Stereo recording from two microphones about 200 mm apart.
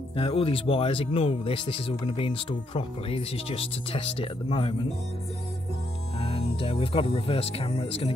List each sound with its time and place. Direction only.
0.1 s speech: 25° left (ahead or behind)
6.1 s music: 30° left (ahead or behind)
6.6 s speech: 30° left (ahead or behind)